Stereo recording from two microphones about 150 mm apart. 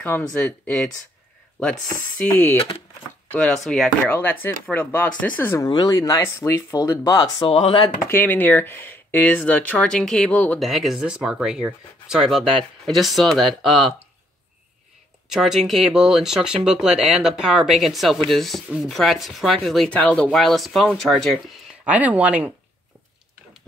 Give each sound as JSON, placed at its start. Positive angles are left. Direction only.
{"t": 0.2, "sound": "speech", "side_deg": 5}
{"t": 1.9, "sound": "speech", "side_deg": 15}
{"t": 4.1, "sound": "speech", "side_deg": 10}
{"t": 5.7, "sound": "speech", "side_deg": 25}
{"t": 8.1, "sound": "speech", "side_deg": 15}
{"t": 15.2, "sound": "speech", "side_deg": -5}
{"t": 21.8, "sound": "speech", "side_deg": -10}